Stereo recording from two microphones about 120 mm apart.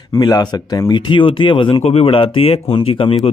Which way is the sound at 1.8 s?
60° left (ahead or behind).